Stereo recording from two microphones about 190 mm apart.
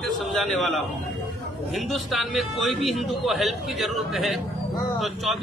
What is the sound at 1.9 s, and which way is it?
A man's voice, centre (ahead or behind).